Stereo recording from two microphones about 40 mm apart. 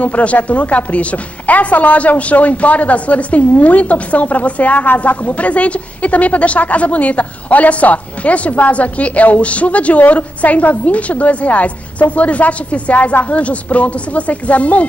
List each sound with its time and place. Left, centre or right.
0.0 s speech: left